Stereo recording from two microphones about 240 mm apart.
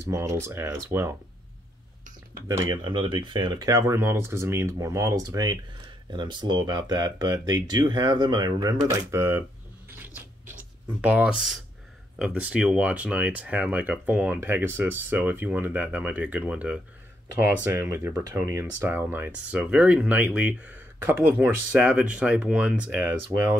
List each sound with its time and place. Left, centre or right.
0.0 s speech: centre
2.4 s speech: centre
11.0 s speech: centre